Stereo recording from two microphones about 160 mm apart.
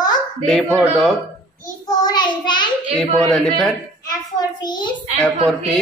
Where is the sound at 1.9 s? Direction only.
25° left (ahead or behind).